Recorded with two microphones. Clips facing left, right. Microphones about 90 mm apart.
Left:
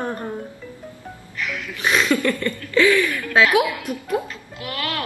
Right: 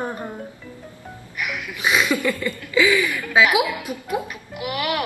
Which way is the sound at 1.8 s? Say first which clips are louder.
Left 1 dB; 10° right (ahead or behind).